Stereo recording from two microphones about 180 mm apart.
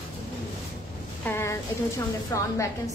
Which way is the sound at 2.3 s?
15° left (ahead or behind).